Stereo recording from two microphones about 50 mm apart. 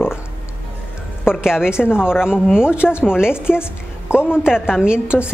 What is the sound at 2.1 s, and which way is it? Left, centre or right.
Speech, centre.